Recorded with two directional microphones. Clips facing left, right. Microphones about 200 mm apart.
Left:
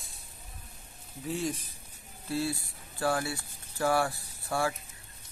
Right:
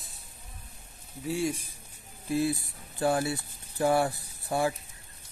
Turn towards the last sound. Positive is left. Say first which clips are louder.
# right 3 dB
turn(degrees=-20)  # may be behind; listen again after turning